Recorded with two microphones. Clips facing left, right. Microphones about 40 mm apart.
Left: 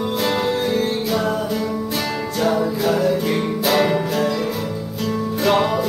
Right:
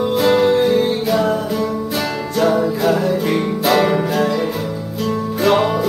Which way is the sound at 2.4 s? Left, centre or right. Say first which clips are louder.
Right 3 dB; centre.